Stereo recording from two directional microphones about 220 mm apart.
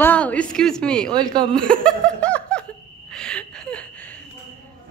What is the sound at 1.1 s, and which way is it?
Speech, 20° right (ahead or behind).